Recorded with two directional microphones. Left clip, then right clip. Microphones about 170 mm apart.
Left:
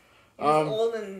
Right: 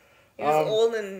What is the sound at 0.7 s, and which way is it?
Speech, 55° right (ahead or behind).